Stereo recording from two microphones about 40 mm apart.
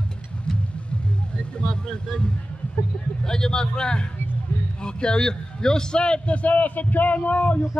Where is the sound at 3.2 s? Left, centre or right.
Centre.